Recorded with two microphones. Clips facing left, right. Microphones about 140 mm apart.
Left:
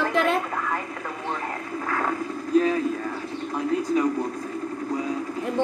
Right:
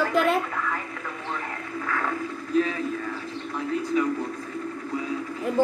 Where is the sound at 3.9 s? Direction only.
35° left (ahead or behind).